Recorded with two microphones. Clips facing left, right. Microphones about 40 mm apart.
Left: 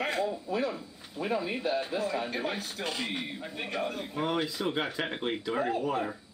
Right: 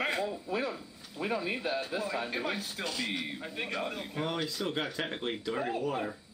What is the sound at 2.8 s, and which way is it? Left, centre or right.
Speech, centre.